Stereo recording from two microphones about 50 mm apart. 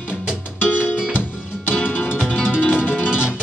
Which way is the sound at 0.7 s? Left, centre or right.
Left.